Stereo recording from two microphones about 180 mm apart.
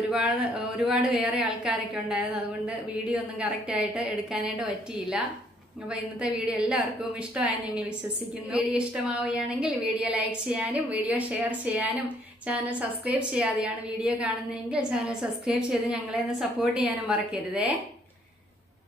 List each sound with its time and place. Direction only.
0.1 s a woman's voice: 5° right (ahead or behind)
5.9 s a woman's voice: 5° right (ahead or behind)